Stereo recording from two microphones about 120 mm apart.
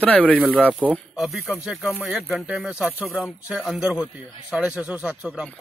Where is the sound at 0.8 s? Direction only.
15° right (ahead or behind).